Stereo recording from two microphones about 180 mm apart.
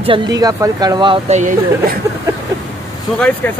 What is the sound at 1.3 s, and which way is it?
Speech, 45° right (ahead or behind).